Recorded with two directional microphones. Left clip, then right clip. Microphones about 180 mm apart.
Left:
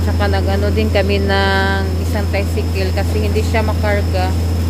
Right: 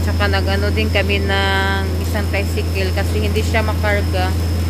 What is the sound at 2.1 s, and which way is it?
Speech, 10° left (ahead or behind).